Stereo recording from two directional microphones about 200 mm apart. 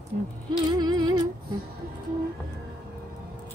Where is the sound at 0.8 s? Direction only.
20° right (ahead or behind).